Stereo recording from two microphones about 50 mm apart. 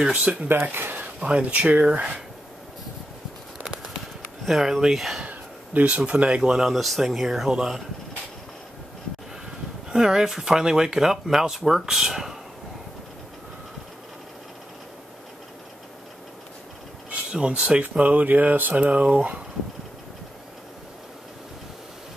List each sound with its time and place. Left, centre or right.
0.1 s speech: right
0.5 s speech: right
1.0 s speech: right
4.5 s speech: centre
5.2 s a sound: right
5.9 s speech: right
6.5 s speech: centre
9.8 s speech: centre
17.3 s speech: centre